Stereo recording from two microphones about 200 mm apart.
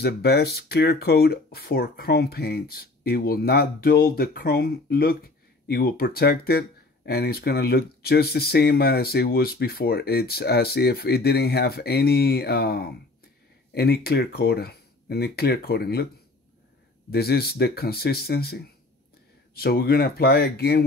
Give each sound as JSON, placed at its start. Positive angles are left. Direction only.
{"t": 0.0, "sound": "speech", "side_deg": 55}
{"t": 17.1, "sound": "speech", "side_deg": 50}